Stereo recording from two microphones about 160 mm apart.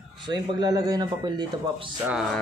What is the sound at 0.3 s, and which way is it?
Speech, 25° right (ahead or behind).